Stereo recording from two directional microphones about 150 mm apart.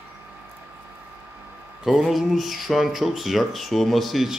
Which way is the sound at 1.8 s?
Centre (ahead or behind).